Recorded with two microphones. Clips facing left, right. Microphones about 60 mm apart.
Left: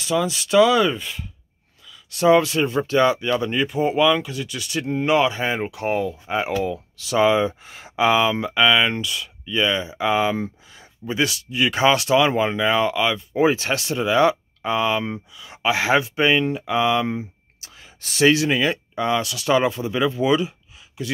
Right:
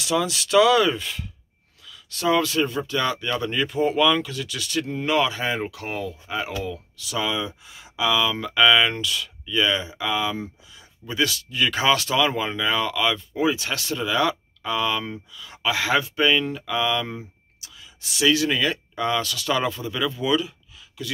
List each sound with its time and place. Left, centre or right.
0.0 s speech: centre
2.1 s speech: left
2.8 s speech: left
3.1 s speech: centre
4.7 s speech: left
8.4 s speech: left
8.6 s speech: centre
9.9 s speech: left
11.1 s speech: left
13.3 s speech: left
17.6 s whispering: left
18.3 s speech: left